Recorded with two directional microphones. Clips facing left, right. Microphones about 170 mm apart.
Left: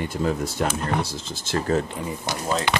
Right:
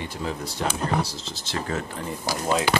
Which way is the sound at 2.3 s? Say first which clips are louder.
Right 2 dB; 10° right (ahead or behind).